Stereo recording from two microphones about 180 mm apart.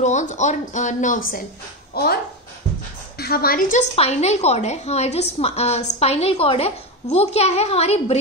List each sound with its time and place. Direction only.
0.0 s speech: 40° left (ahead or behind)
3.2 s a woman's voice: 60° left (ahead or behind)
3.9 s a woman's voice: 35° left (ahead or behind)